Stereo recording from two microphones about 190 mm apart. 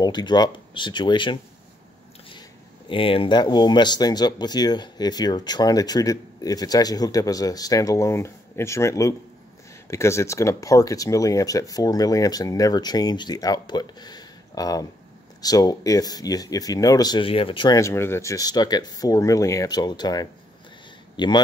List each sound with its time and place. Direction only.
0.0 s speech: 25° left (ahead or behind)
2.9 s speech: 30° left (ahead or behind)